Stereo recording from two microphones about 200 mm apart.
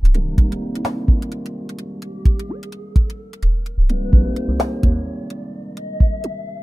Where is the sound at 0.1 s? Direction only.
Centre (ahead or behind).